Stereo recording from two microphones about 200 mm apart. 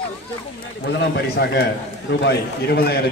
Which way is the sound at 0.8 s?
55° left (ahead or behind).